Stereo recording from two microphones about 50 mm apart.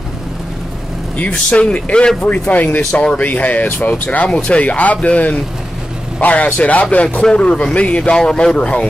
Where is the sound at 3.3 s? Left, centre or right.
Left.